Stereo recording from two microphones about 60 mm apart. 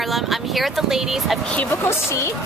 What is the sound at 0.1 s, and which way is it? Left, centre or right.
Speech, centre.